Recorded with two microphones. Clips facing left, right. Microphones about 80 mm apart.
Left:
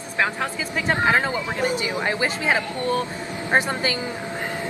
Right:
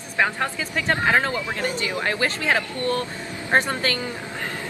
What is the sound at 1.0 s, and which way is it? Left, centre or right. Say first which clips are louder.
A woman's voice: even; centre.